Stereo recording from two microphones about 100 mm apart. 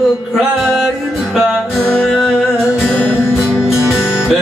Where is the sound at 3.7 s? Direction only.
5° right (ahead or behind).